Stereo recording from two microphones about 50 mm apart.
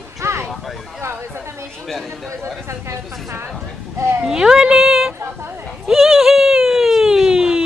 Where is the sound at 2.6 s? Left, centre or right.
Right.